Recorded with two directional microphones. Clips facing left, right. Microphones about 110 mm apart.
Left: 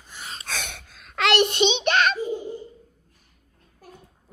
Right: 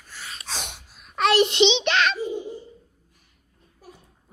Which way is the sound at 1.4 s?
45° left (ahead or behind).